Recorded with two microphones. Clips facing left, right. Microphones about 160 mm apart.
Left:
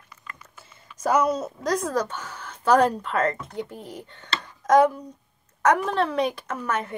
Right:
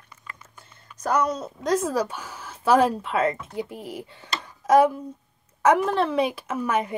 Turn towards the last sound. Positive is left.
turn(degrees=-10)  # may be behind; listen again after turning